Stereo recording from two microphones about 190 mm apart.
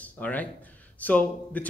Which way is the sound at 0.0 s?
10° left (ahead or behind).